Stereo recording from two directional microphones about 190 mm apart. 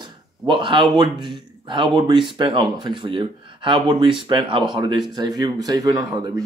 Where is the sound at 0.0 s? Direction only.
25° right (ahead or behind).